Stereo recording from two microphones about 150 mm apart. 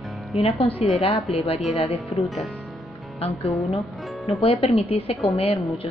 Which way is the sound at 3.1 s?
40° left (ahead or behind).